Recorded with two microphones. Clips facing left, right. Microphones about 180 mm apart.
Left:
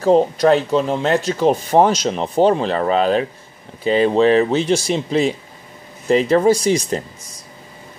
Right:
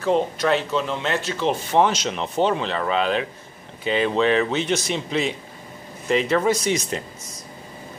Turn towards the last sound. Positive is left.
turn(degrees=35)  # may be behind; listen again after turning